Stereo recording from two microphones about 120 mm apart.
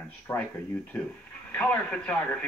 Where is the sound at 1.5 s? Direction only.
10° left (ahead or behind).